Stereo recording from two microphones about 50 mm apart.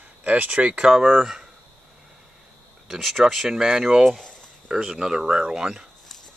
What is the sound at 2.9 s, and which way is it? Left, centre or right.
Speech, centre.